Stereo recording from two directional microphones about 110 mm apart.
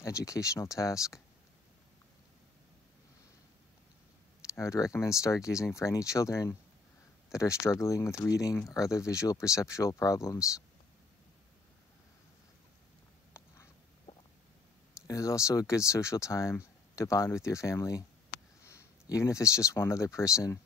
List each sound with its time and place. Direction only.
0.0 s speech: 30° left (ahead or behind)
4.6 s speech: 30° left (ahead or behind)
14.1 s stomach rumble: 40° left (ahead or behind)
15.0 s speech: 30° left (ahead or behind)